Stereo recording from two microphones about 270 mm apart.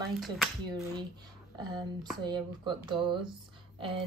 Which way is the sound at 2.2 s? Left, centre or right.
Centre.